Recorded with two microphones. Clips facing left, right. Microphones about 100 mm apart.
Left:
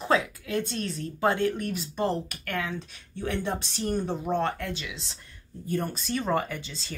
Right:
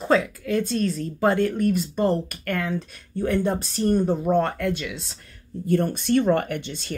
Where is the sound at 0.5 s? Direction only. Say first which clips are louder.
Right 6 dB; 45° right (ahead or behind).